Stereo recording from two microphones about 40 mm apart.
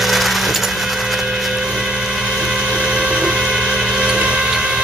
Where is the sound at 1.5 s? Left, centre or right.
Centre.